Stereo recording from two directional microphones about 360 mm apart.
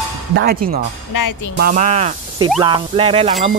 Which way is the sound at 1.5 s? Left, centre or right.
Right.